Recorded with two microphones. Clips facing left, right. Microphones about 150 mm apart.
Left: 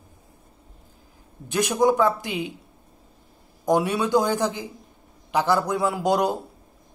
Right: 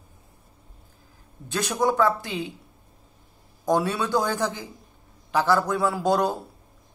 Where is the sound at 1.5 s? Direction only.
20° left (ahead or behind).